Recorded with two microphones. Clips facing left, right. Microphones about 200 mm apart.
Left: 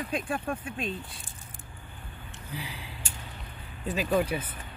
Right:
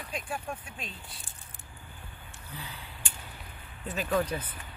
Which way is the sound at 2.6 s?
10° left (ahead or behind).